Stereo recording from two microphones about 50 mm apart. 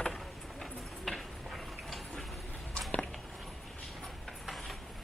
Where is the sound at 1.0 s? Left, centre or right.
Centre.